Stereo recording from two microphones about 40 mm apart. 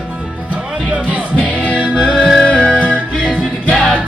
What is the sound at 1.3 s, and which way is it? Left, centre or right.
Music, left.